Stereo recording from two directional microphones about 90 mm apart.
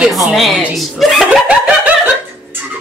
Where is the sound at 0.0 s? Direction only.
Centre (ahead or behind).